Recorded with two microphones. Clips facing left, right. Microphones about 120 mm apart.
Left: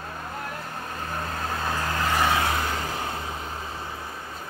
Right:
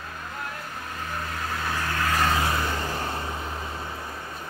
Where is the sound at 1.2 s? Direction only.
30° left (ahead or behind).